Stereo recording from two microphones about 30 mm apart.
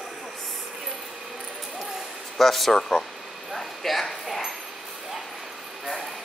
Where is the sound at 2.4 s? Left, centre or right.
Centre.